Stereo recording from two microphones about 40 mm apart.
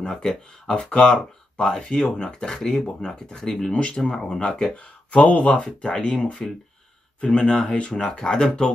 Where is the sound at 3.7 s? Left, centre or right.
Left.